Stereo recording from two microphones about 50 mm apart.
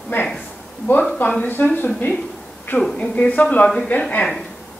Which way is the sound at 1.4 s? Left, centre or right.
Left.